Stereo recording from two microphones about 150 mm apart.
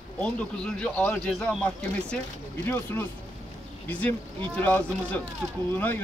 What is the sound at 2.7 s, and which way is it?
Speech, 15° left (ahead or behind).